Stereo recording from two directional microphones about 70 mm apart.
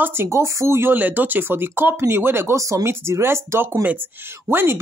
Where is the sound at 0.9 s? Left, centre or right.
Right.